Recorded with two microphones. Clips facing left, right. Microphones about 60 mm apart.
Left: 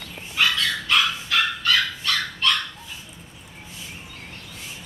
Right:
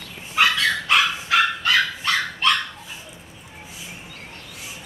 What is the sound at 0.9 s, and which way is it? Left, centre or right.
Dog, right.